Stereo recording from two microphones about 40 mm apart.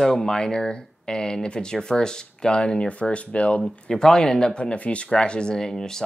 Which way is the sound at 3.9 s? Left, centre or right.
Centre.